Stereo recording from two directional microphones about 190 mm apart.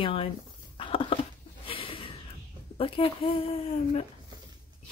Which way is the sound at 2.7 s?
30° left (ahead or behind).